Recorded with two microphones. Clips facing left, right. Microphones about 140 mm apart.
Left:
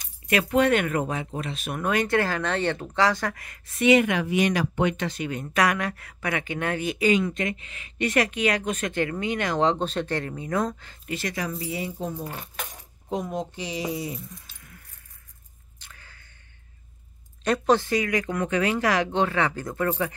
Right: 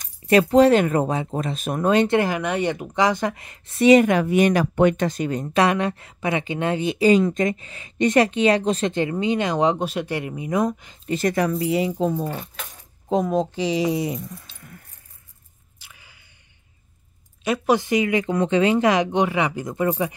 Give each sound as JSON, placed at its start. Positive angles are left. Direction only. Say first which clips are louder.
{"t": 0.3, "sound": "speech", "louder": "right 7 dB", "side_deg": -30}
{"t": 11.1, "sound": "speech", "louder": "right 9 dB", "side_deg": -40}
{"t": 11.3, "sound": "speech", "louder": "right 9 dB", "side_deg": -80}
{"t": 13.2, "sound": "speech", "louder": "right 9 dB", "side_deg": -90}
{"t": 15.8, "sound": "squish", "louder": "even", "side_deg": -10}
{"t": 17.4, "sound": "speech", "louder": "right 1 dB", "side_deg": -10}